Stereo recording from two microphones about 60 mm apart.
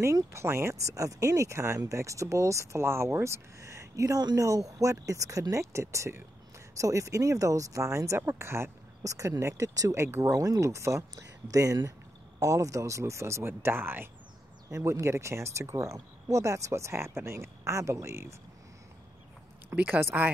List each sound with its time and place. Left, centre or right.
0.0 s speech: right
9.0 s speech: right
13.5 s speech: right
14.7 s speech: right
19.7 s speech: right
20.0 s speech: right